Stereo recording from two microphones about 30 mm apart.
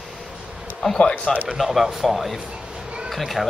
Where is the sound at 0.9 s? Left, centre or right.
Left.